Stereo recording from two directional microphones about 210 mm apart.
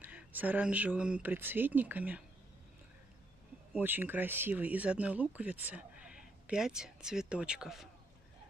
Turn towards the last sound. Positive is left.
turn(degrees=0)  # may be behind; listen again after turning